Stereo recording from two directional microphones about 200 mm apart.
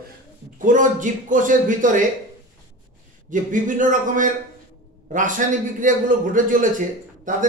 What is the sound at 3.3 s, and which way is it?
A man's voice, 40° right (ahead or behind).